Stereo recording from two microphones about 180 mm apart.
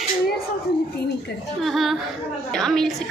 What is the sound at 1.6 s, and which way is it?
A woman's voice, centre (ahead or behind).